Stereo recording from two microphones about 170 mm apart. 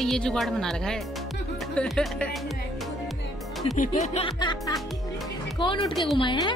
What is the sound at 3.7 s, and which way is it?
Music, 45° left (ahead or behind).